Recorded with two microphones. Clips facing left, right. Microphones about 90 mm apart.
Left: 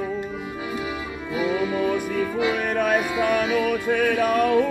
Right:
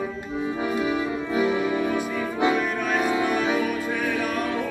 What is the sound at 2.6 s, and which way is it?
Music, 55° left (ahead or behind).